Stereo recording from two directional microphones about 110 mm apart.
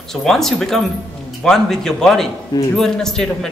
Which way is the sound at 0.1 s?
5° left (ahead or behind).